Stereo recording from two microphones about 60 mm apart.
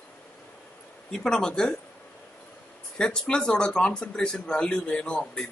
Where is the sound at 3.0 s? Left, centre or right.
Centre.